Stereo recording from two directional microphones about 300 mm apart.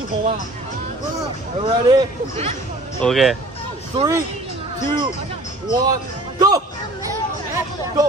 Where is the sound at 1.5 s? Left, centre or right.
Centre.